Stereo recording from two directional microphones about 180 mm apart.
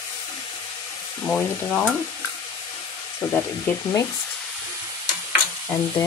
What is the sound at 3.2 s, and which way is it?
Speech, 10° left (ahead or behind).